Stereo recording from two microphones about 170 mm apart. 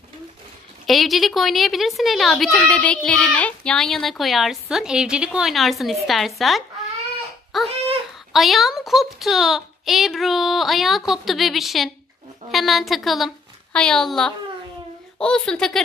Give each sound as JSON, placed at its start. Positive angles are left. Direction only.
{"t": 0.8, "sound": "speech", "side_deg": 0}